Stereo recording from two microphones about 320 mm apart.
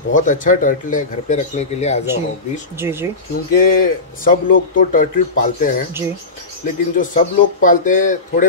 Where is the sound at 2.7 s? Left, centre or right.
Centre.